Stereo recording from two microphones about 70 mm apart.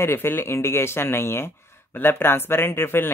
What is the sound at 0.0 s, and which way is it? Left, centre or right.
Speech, left.